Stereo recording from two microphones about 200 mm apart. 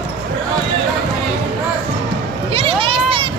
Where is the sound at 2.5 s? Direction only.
25° right (ahead or behind).